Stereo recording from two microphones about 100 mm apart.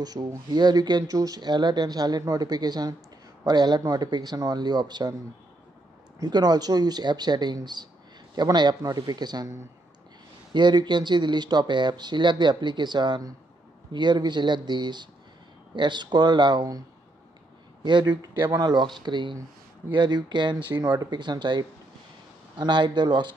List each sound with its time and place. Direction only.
0.0 s speech: 40° right (ahead or behind)
6.1 s speech: 45° right (ahead or behind)
17.8 s speech: 50° right (ahead or behind)